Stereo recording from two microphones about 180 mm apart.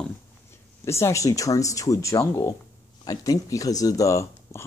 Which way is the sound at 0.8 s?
15° left (ahead or behind).